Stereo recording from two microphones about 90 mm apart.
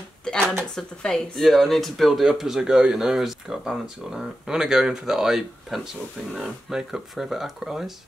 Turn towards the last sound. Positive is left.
turn(degrees=-5)  # may be behind; listen again after turning